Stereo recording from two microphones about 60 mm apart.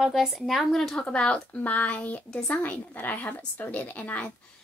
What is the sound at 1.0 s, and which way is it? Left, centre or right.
Speech, centre.